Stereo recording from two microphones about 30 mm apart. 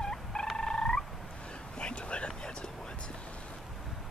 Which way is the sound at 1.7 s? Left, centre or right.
Left.